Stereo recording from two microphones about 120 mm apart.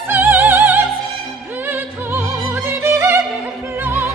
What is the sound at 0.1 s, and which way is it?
Opera, 20° right (ahead or behind).